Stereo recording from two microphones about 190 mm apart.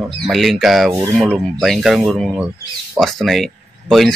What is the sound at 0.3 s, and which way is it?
Speech, centre (ahead or behind).